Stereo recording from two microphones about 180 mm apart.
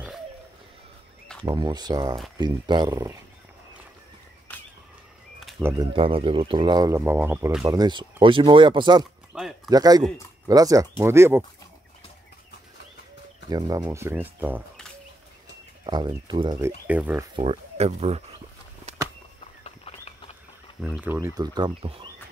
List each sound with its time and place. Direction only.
1.4 s speech: 25° right (ahead or behind)
4.5 s a sound: 10° left (ahead or behind)
5.6 s speech: 15° right (ahead or behind)
5.9 s speech: 30° right (ahead or behind)
9.3 s speech: centre (ahead or behind)
9.7 s speech: 20° right (ahead or behind)
13.5 s speech: 20° right (ahead or behind)
15.8 s speech: 25° right (ahead or behind)
17.4 s speech: 35° right (ahead or behind)
19.6 s a sound: 35° left (ahead or behind)
20.8 s speech: 10° right (ahead or behind); by 22.1 s 30° right (ahead or behind)